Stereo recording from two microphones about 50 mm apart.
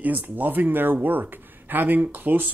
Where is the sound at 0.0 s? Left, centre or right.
Right.